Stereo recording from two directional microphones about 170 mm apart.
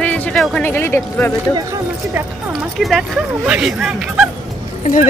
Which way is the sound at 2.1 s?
Centre (ahead or behind).